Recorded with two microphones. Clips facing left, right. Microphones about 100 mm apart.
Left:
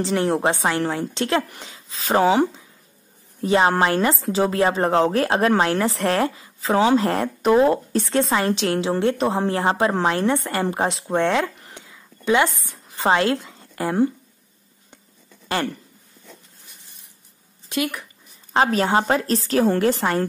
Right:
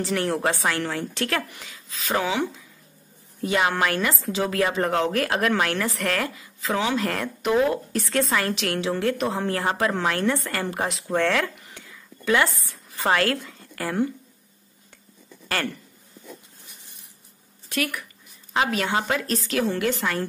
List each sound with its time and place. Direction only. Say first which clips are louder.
0.0 s a woman's voice: left 4 dB; 25° left (ahead or behind)
3.4 s a woman's voice: left 5 dB; 35° left (ahead or behind)
15.4 s a sound: left 4 dB; 20° left (ahead or behind)
17.6 s speech: left 3 dB; 20° left (ahead or behind)
18.5 s a woman's voice: left 5 dB; 35° left (ahead or behind)